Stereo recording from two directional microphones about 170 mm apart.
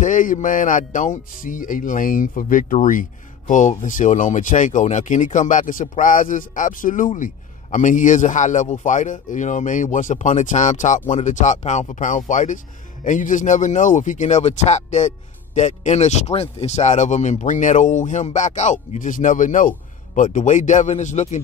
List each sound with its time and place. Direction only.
0.0 s speech: 50° left (ahead or behind)